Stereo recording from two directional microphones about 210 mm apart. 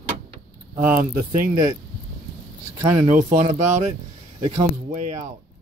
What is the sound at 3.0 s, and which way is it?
Speech, 35° right (ahead or behind).